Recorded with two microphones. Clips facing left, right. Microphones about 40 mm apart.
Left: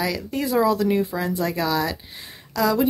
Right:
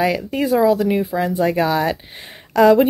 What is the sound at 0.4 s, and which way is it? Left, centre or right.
Speech, centre.